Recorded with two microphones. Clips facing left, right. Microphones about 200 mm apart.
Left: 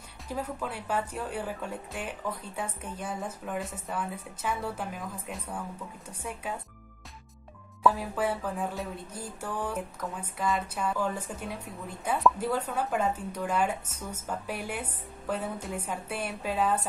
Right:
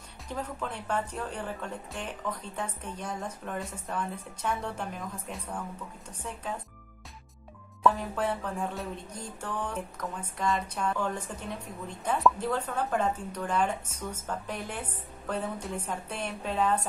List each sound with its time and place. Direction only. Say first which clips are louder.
0.3 s music: left 1 dB; 10° left (ahead or behind)
7.8 s music: even; 5° left (ahead or behind)